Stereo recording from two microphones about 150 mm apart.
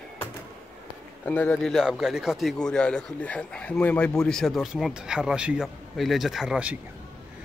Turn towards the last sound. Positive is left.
turn(degrees=-5)  # may be behind; listen again after turning